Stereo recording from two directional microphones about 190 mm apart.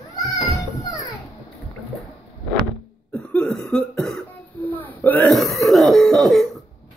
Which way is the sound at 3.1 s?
5° left (ahead or behind).